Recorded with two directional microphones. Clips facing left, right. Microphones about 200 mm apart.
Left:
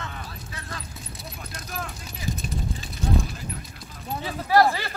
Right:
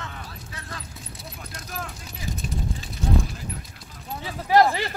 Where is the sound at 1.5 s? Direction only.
Centre (ahead or behind).